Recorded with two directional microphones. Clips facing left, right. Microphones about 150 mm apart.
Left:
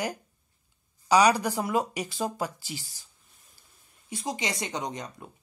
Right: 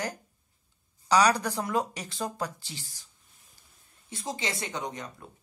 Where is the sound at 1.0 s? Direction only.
10° left (ahead or behind).